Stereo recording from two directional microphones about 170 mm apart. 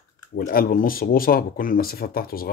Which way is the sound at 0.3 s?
60° left (ahead or behind).